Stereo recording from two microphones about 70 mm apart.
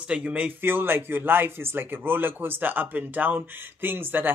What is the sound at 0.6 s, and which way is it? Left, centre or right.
Speech, right.